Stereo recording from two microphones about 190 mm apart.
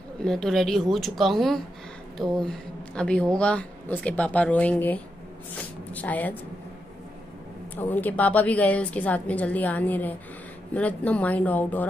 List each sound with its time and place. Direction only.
0.2 s speech: 5° left (ahead or behind)
7.7 s speech: 10° left (ahead or behind)